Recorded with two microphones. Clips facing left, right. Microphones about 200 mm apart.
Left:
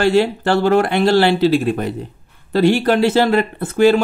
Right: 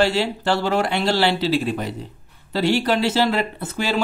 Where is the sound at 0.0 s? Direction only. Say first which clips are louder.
Left 5 dB; 55° left (ahead or behind).